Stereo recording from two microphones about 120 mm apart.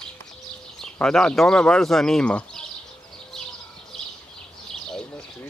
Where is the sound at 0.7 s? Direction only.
5° left (ahead or behind).